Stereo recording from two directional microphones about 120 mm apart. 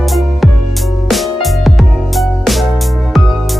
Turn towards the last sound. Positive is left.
turn(degrees=0)  # may be behind; listen again after turning